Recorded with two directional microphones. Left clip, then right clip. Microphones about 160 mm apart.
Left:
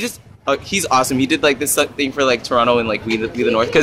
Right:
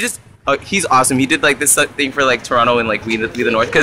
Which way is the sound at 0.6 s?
25° right (ahead or behind).